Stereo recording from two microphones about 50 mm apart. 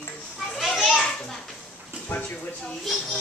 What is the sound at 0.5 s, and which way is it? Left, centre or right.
Children playing, centre.